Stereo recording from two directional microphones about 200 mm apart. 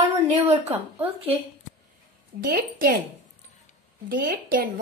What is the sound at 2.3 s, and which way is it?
Speech, 45° right (ahead or behind).